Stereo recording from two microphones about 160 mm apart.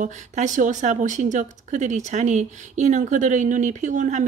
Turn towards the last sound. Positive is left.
turn(degrees=-50)  # may be behind; listen again after turning